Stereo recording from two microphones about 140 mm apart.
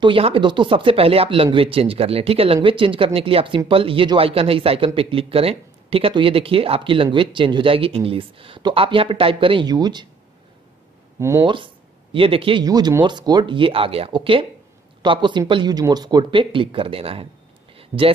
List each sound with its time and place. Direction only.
0.0 s speech: 40° right (ahead or behind)
11.1 s speech: 20° right (ahead or behind)
11.4 s speech: 35° right (ahead or behind)
12.6 s speech: 30° right (ahead or behind)
17.7 s a sound: 40° right (ahead or behind)